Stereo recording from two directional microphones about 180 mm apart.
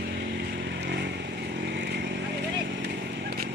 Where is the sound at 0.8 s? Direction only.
70° right (ahead or behind).